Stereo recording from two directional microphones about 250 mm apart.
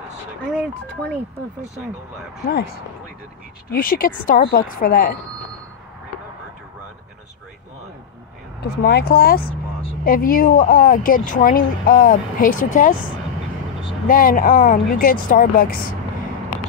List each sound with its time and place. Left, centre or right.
2.4 s speech: left
8.6 s speech: left
14.0 s speech: left